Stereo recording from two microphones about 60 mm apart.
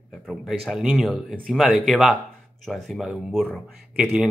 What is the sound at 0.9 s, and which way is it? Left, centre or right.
Speech, centre.